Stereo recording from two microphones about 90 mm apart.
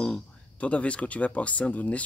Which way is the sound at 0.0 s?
10° left (ahead or behind).